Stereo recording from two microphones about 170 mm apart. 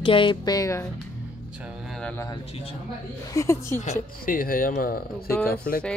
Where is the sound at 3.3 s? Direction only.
15° left (ahead or behind).